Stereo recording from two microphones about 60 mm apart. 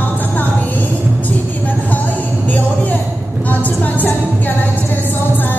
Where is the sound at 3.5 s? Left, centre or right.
Left.